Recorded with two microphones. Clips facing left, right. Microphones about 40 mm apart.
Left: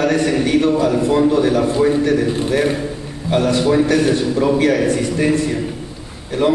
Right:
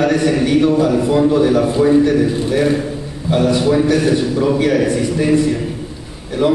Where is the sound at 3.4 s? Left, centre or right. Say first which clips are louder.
Right 1 dB; centre.